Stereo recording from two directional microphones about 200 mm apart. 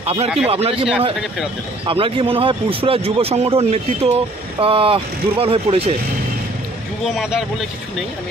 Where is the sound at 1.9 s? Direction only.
25° right (ahead or behind).